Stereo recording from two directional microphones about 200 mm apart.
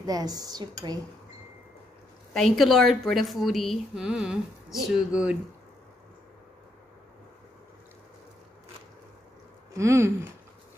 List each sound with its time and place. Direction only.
0.0 s speech: 20° right (ahead or behind)
2.3 s a woman's voice: centre (ahead or behind)
9.8 s speech: 15° right (ahead or behind)